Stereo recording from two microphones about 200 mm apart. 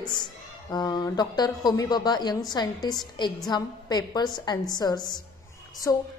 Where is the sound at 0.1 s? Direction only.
20° left (ahead or behind).